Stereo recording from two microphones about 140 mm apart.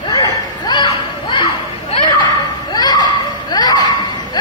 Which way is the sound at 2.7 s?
30° left (ahead or behind).